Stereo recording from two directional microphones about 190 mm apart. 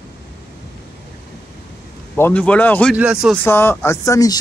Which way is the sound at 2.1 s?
5° left (ahead or behind).